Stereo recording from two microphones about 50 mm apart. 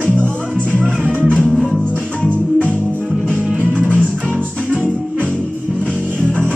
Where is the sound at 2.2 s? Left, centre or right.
Left.